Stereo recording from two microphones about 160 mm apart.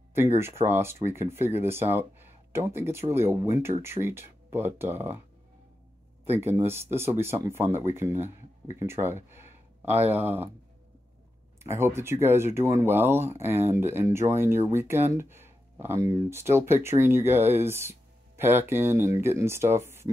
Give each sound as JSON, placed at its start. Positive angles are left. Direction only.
{"t": 0.4, "sound": "speech", "side_deg": -15}
{"t": 6.2, "sound": "speech", "side_deg": -15}
{"t": 11.6, "sound": "speech", "side_deg": -15}